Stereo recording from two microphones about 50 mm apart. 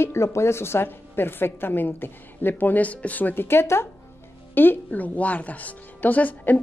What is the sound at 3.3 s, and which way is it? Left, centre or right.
Speech, left.